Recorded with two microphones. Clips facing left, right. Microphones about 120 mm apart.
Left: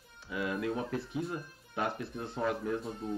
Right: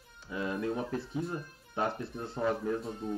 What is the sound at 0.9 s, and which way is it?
Speech, centre (ahead or behind).